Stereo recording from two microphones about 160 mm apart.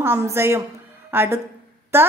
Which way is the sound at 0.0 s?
15° right (ahead or behind).